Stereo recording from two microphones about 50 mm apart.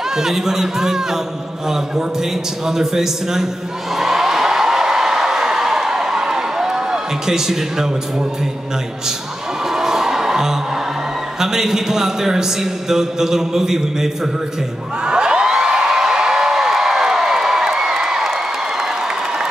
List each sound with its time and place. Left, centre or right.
0.1 s a man's voice: centre
2.6 s a man's voice: centre
3.9 s a sound: centre
9.7 s music: centre
11.3 s a man's voice: centre
15.0 s a sound: centre